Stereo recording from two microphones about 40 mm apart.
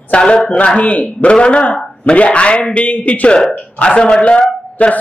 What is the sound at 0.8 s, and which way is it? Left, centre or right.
Speech, left.